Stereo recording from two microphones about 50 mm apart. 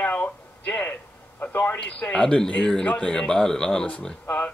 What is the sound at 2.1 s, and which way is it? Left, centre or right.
A man's voice, centre.